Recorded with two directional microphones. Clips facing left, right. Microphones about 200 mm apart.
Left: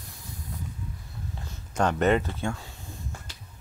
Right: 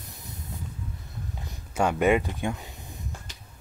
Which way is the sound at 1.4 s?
10° right (ahead or behind).